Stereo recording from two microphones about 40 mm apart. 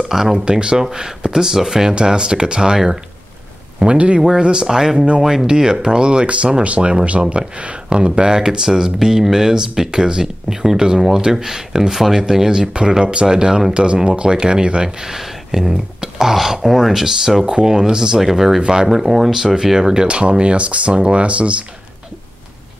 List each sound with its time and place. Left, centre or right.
0.1 s speech: centre
3.8 s speech: right; by 17.5 s centre
17.5 s speech: centre; by 21.6 s right